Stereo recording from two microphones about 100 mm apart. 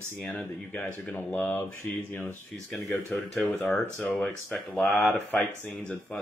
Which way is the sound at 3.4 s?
15° left (ahead or behind).